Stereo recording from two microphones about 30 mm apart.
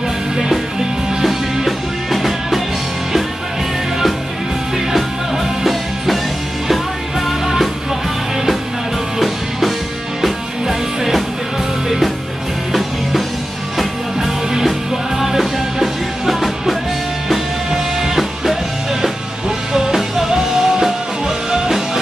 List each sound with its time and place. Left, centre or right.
0.7 s music: centre
4.7 s music: centre
9.2 s music: centre
15.1 s music: centre
18.0 s music: centre
19.7 s music: centre